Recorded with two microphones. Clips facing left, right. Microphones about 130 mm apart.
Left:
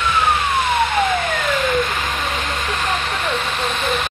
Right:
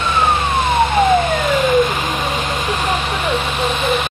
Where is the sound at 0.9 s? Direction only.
20° right (ahead or behind).